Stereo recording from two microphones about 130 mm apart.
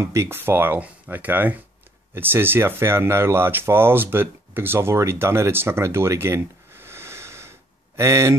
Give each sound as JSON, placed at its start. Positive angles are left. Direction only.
{"t": 0.0, "sound": "speech", "side_deg": -20}